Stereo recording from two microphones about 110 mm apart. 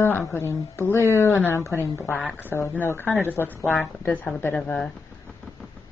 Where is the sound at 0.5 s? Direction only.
20° left (ahead or behind).